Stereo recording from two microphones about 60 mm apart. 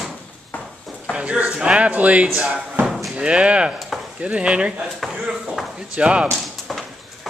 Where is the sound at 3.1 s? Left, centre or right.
Centre.